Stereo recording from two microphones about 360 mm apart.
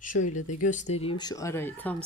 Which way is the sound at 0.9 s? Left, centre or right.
Centre.